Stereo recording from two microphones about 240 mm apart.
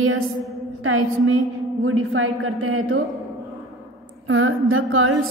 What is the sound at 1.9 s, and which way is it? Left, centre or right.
A woman's voice, right.